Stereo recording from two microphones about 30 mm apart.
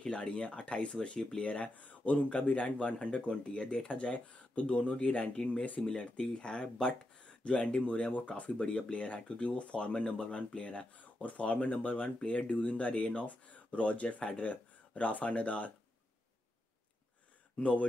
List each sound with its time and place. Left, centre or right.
0.0 s a sound: left
0.3 s speech: left
5.9 s speech: left
8.1 s speech: left
8.5 s speech: left
11.0 s speech: left
13.2 s speech: left